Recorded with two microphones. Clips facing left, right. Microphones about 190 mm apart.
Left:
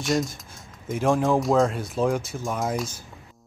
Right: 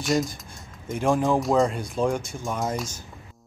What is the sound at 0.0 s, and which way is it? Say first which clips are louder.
Speech: even; centre (ahead or behind).